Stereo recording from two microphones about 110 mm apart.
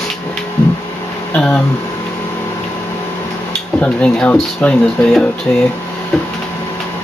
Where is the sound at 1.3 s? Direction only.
15° left (ahead or behind).